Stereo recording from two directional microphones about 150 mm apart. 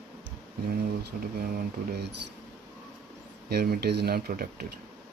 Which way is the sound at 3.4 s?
90° right.